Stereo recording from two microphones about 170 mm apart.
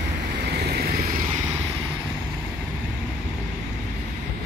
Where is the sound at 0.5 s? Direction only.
70° right (ahead or behind).